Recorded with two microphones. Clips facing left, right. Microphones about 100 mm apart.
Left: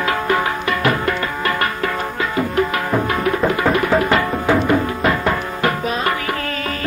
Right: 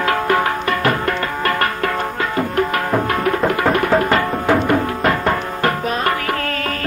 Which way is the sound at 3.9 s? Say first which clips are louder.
Even; 35° right (ahead or behind).